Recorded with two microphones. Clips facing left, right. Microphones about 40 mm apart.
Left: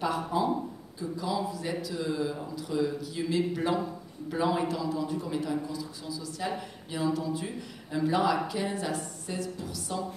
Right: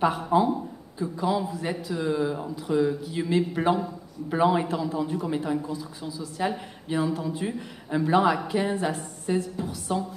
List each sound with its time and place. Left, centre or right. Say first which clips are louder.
0.0 s a man's voice: right 6 dB; right